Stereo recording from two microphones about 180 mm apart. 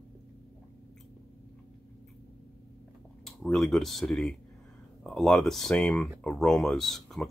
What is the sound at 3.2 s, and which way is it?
Speech, centre (ahead or behind).